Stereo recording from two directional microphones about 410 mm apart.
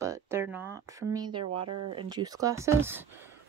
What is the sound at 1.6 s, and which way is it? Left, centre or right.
Speech, right.